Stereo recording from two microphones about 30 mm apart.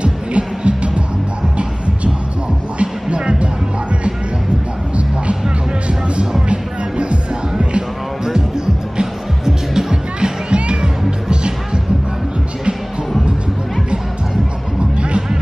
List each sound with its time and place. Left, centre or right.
0.0 s music: right
2.8 s music: right
4.9 s music: right
6.5 s music: right
8.3 s music: right
10.5 s music: right